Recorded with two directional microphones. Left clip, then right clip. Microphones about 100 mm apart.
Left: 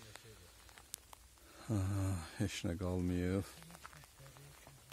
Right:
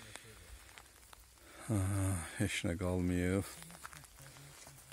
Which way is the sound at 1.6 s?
20° right (ahead or behind).